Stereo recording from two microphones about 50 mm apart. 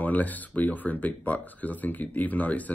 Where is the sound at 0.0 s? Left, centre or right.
Left.